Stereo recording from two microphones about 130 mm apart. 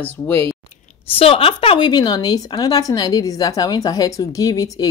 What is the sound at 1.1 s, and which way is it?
A woman's voice, 45° left (ahead or behind).